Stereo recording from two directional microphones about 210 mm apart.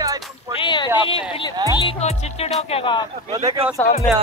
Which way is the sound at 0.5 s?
25° left (ahead or behind).